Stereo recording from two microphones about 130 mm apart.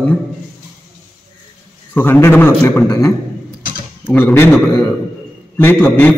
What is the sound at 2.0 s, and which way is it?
A man's voice, 15° left (ahead or behind).